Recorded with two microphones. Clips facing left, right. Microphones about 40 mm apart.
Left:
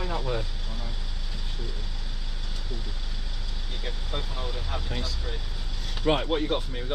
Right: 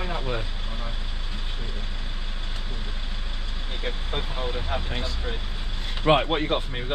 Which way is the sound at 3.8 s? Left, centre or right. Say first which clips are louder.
Right 4 dB; right.